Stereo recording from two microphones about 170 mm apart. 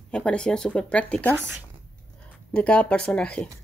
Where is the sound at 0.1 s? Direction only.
5° left (ahead or behind).